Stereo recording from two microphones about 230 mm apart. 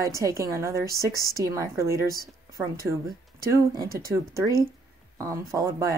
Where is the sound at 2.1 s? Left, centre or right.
Centre.